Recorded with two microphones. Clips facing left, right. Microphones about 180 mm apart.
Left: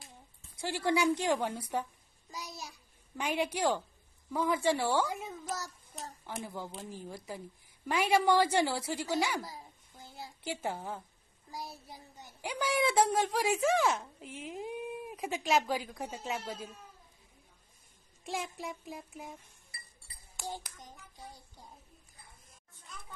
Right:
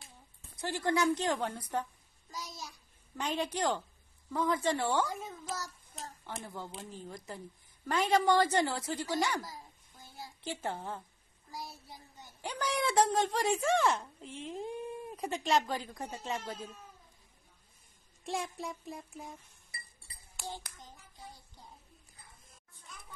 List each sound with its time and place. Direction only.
0.6 s speech: 10° left (ahead or behind)
3.2 s speech: 10° left (ahead or behind)
10.4 s a child's voice: 10° left (ahead or behind)
12.4 s speech: 10° left (ahead or behind)
18.2 s a sound: centre (ahead or behind)